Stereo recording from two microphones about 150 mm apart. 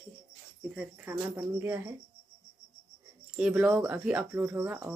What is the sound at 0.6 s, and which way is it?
Speech, 5° right (ahead or behind).